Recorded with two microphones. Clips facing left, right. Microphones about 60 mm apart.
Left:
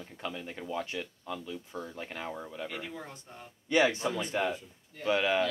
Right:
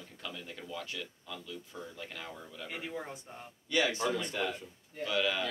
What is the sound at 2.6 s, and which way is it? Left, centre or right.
Speech, centre.